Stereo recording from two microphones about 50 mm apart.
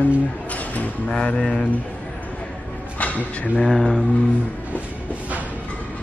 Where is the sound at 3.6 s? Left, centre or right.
Centre.